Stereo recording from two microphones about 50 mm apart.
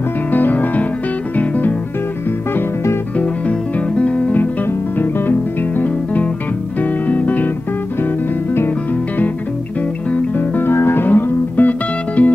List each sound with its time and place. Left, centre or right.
0.3 s music: left
3.2 s music: left
6.8 s music: left
10.3 s music: left
11.1 s music: left